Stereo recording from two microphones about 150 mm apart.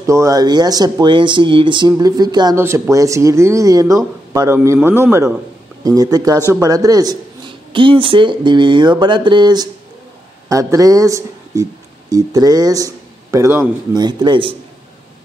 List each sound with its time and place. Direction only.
0.0 s speech: 20° right (ahead or behind)
13.9 s speech: 30° right (ahead or behind)